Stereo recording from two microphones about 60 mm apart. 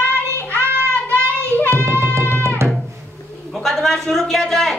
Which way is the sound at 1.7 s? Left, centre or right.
Right.